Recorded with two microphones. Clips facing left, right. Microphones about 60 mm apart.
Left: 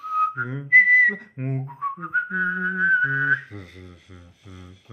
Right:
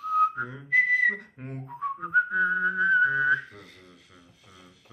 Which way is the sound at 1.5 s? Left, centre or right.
Left.